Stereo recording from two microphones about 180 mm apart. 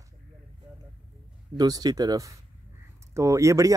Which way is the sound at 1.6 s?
20° right (ahead or behind).